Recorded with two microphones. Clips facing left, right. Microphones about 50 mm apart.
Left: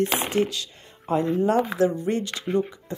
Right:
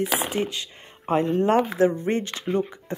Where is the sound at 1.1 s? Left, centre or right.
Right.